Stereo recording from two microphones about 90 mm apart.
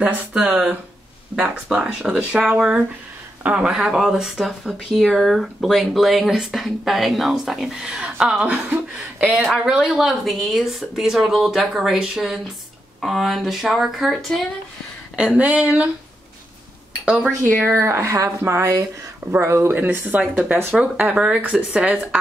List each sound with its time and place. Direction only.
0.3 s speech: 5° right (ahead or behind)
15.1 s speech: 15° right (ahead or behind)
17.0 s speech: 15° right (ahead or behind)
17.6 s speech: 30° right (ahead or behind); by 22.2 s 10° right (ahead or behind)